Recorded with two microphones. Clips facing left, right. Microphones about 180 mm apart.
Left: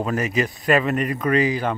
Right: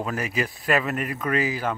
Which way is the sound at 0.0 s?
5° right (ahead or behind).